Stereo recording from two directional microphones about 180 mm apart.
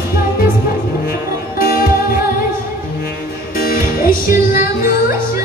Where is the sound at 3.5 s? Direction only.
55° left (ahead or behind).